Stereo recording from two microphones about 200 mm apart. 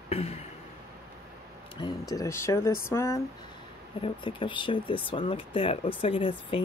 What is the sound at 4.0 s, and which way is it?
Speech, 25° left (ahead or behind).